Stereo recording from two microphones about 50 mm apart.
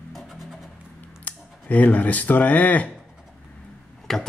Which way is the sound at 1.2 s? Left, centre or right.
Left.